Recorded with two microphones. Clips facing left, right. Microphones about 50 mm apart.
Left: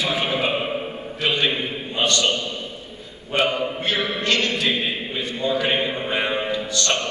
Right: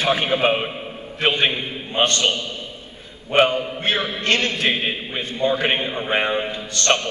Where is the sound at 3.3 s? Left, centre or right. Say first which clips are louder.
Right 4 dB; right.